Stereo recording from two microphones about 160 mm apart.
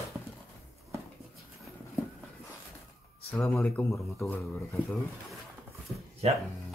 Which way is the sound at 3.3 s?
5° left (ahead or behind).